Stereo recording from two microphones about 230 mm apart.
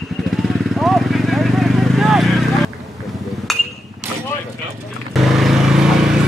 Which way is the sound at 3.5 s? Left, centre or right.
Centre.